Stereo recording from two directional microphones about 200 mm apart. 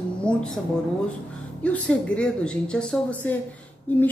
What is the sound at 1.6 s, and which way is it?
Speech, 5° left (ahead or behind).